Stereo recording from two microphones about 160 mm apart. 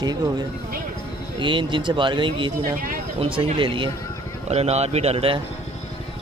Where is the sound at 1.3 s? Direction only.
30° right (ahead or behind).